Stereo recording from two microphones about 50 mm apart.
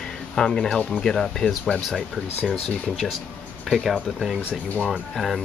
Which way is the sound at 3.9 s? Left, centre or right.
Centre.